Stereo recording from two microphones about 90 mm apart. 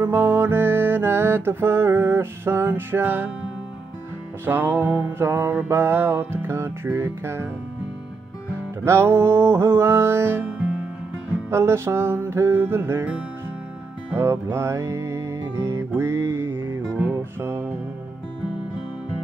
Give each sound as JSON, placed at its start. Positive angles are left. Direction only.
{"t": 0.0, "sound": "music", "side_deg": -25}
{"t": 4.5, "sound": "music", "side_deg": -25}
{"t": 8.8, "sound": "music", "side_deg": -30}
{"t": 11.5, "sound": "music", "side_deg": -30}
{"t": 14.1, "sound": "music", "side_deg": -30}